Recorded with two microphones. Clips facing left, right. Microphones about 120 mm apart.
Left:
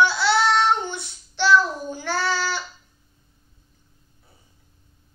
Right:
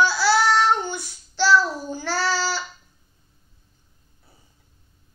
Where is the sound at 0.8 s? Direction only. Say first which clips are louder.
Right 1 dB; 25° left (ahead or behind).